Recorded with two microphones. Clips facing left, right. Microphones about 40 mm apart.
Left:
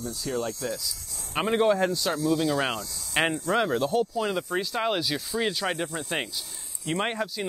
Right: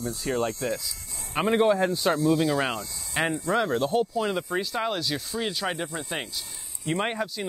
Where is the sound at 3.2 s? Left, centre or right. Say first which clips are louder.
Left 2 dB; left.